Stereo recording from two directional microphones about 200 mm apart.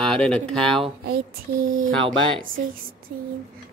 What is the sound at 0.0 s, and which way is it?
Speech, 5° left (ahead or behind).